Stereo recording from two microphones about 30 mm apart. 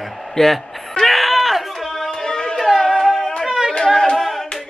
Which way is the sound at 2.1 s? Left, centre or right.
Centre.